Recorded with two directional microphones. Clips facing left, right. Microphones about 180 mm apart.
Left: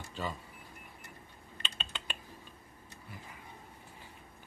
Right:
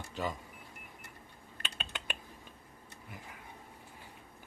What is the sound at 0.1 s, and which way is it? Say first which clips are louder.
Speech: right 2 dB; 15° right (ahead or behind).